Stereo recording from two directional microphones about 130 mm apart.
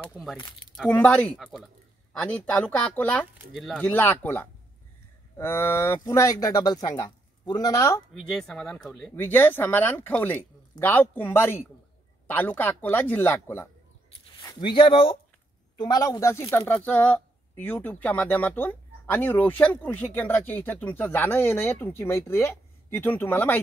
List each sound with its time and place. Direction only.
0.8 s speech: 15° left (ahead or behind)
3.5 s speech: centre (ahead or behind)
3.8 s a man's voice: 15° left (ahead or behind)
8.1 s speech: 5° left (ahead or behind)
9.1 s speech: 15° left (ahead or behind)
14.4 s speech: 35° left (ahead or behind)
15.8 s speech: 30° left (ahead or behind)